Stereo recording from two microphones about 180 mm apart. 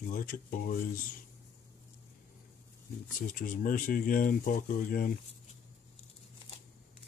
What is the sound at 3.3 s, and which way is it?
Speech, 50° left (ahead or behind).